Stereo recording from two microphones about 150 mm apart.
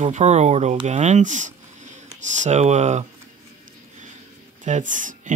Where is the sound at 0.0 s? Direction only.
50° right (ahead or behind).